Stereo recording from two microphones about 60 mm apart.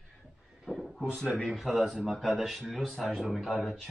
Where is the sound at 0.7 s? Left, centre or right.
Centre.